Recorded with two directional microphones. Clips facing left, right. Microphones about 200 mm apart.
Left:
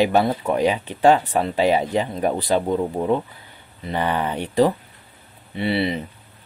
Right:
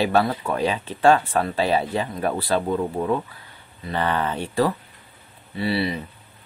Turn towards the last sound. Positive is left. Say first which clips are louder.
# left 2 dB
turn(degrees=20)  # may be behind; listen again after turning